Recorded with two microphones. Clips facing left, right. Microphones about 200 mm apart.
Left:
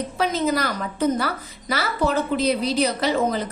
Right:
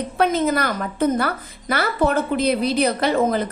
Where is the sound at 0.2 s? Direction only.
55° right (ahead or behind).